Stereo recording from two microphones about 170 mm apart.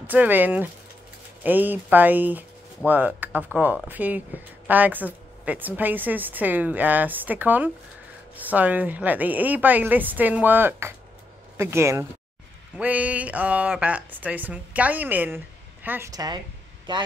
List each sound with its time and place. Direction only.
0.0 s speech: 10° right (ahead or behind); by 17.0 s 25° right (ahead or behind)